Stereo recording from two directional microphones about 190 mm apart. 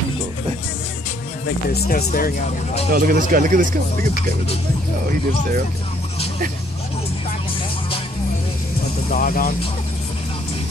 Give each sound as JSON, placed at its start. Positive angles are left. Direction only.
{"t": 1.7, "sound": "speech", "side_deg": 55}
{"t": 2.9, "sound": "speech", "side_deg": -50}
{"t": 9.1, "sound": "speech", "side_deg": 50}